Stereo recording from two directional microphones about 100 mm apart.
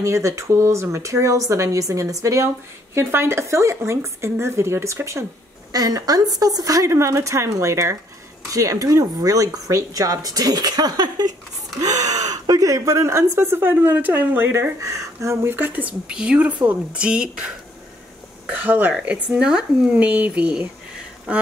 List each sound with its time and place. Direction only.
0.0 s speech: 30° right (ahead or behind)
5.7 s speech: 40° right (ahead or behind)
15.5 s speech: 15° right (ahead or behind)
18.5 s speech: 15° right (ahead or behind)